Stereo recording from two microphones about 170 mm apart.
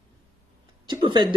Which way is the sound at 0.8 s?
25° right (ahead or behind).